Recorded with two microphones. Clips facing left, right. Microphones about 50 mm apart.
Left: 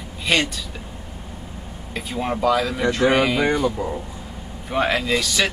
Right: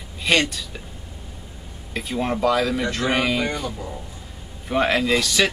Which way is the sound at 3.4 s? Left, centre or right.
Left.